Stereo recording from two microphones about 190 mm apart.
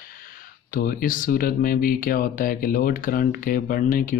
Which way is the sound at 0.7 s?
45° left (ahead or behind).